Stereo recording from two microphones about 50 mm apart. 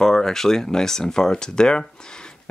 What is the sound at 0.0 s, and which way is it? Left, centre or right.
Speech, centre.